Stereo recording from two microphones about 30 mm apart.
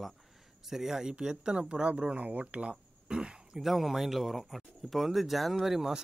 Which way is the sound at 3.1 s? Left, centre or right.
Right.